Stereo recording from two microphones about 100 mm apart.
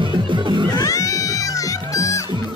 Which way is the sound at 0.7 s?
35° left (ahead or behind).